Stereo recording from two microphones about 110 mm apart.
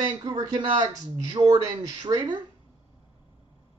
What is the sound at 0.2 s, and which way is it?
Speech, 40° right (ahead or behind).